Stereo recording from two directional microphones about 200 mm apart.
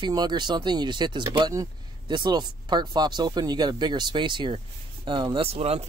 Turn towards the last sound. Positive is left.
turn(degrees=-30)  # may be behind; listen again after turning